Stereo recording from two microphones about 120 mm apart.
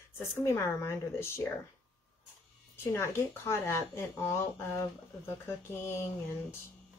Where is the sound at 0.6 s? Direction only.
25° left (ahead or behind).